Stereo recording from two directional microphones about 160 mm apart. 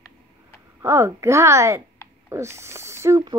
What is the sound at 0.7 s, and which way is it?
Speech, 15° right (ahead or behind).